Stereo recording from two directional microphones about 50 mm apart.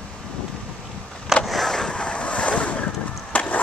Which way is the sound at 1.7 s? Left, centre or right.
Centre.